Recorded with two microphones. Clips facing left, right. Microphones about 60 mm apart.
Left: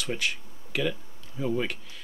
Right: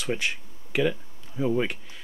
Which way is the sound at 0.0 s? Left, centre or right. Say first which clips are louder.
Right 2 dB; right.